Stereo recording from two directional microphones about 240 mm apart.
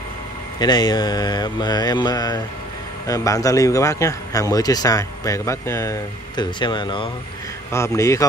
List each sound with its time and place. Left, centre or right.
0.6 s a man's voice: centre